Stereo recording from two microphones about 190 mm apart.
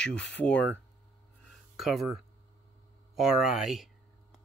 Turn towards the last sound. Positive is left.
turn(degrees=0)  # may be behind; listen again after turning